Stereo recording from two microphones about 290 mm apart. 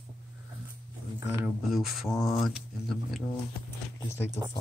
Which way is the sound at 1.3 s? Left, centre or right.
Centre.